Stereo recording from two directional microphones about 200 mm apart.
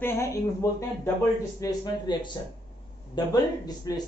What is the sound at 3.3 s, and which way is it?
Speech, 20° left (ahead or behind).